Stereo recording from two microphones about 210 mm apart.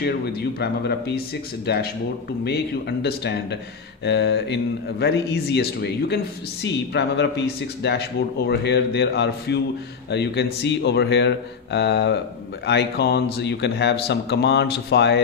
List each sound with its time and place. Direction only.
0.0 s speech: 50° left (ahead or behind)